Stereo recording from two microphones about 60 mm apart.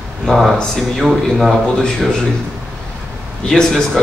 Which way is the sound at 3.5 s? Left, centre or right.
Centre.